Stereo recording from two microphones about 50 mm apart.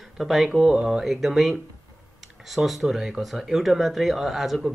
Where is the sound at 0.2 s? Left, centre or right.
Centre.